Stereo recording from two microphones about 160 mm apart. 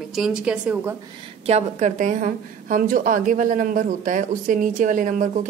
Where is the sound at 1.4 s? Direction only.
45° right (ahead or behind).